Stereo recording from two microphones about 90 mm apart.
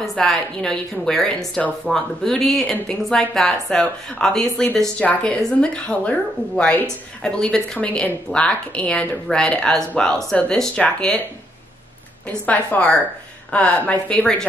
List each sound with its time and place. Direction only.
0.0 s a woman's voice: 5° left (ahead or behind)
12.3 s a woman's voice: 15° left (ahead or behind)